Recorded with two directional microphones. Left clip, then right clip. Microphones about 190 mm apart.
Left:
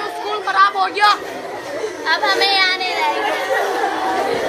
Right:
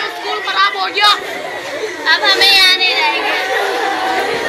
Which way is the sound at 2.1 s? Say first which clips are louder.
Right 6 dB; 10° left (ahead or behind).